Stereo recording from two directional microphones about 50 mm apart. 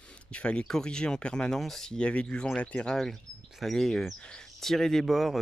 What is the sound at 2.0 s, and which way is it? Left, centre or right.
Speech, left.